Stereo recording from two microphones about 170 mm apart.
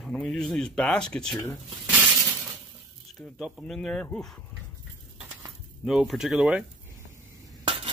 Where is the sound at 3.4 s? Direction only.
5° left (ahead or behind).